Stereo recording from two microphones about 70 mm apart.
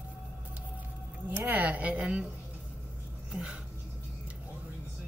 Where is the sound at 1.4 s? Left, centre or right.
Right.